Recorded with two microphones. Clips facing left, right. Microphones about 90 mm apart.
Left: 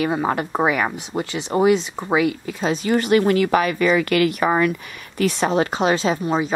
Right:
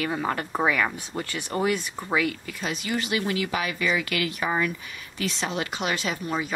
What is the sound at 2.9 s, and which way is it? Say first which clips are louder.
Speech: left 11 dB; 50° left (ahead or behind).